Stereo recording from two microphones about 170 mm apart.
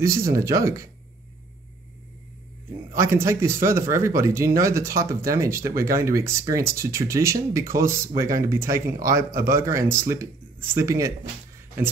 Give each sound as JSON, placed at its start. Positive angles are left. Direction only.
{"t": 0.0, "sound": "speech", "side_deg": -15}
{"t": 3.0, "sound": "speech", "side_deg": -15}